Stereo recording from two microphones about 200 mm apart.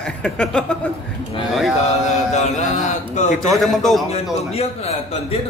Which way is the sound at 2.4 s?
35° left (ahead or behind).